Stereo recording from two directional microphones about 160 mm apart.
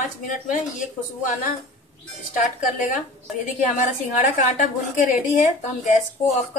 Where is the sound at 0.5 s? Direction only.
55° left (ahead or behind).